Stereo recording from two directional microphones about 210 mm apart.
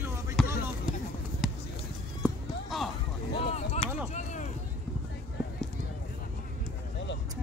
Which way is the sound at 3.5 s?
30° left (ahead or behind).